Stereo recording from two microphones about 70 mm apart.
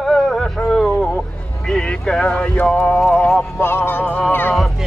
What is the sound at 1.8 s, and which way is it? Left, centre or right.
Speech, centre.